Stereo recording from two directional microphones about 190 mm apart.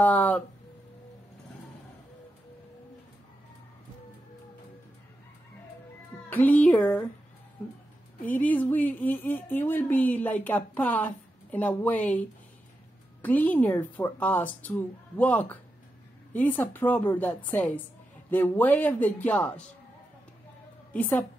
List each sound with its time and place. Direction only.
0.0 s a sound: 10° left (ahead or behind)
6.3 s speech: 10° left (ahead or behind)
8.2 s speech: 10° left (ahead or behind)
20.9 s speech: 10° left (ahead or behind)